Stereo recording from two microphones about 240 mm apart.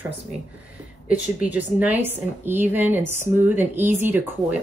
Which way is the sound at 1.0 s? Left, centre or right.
Centre.